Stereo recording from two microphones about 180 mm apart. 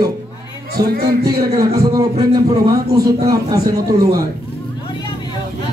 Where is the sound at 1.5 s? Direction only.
20° right (ahead or behind).